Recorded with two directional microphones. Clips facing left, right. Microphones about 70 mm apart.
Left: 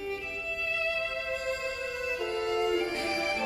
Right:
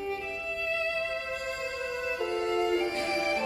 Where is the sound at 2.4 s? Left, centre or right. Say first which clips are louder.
Even; right.